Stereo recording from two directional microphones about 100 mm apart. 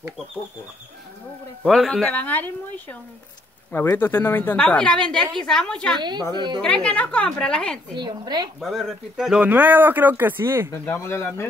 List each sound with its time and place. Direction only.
1.6 s speech: 5° left (ahead or behind)
2.1 s a woman's voice: 15° left (ahead or behind)
4.6 s a woman's voice: 10° left (ahead or behind)
5.9 s a woman's voice: 45° right (ahead or behind)
6.6 s a woman's voice: 10° left (ahead or behind)
7.9 s a woman's voice: 45° right (ahead or behind)
8.5 s speech: centre (ahead or behind)
9.4 s speech: 15° right (ahead or behind)
10.7 s speech: 25° left (ahead or behind)